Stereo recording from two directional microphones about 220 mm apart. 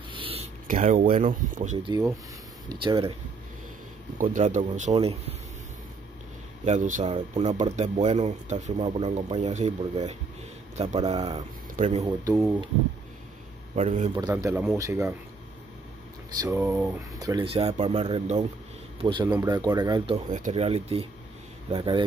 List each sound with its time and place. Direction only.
0.1 s a sound: 25° right (ahead or behind)
0.7 s speech: 35° right (ahead or behind)
1.9 s speech: 15° right (ahead or behind)
4.2 s speech: 35° right (ahead or behind)
6.6 s speech: 30° right (ahead or behind)
13.7 s speech: 30° right (ahead or behind)
14.1 s speech: 15° right (ahead or behind)
16.5 s speech: 5° right (ahead or behind)
20.2 s speech: 35° right (ahead or behind)